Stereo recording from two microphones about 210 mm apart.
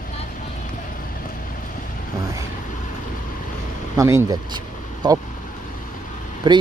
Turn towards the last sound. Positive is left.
turn(degrees=-20)  # may be behind; listen again after turning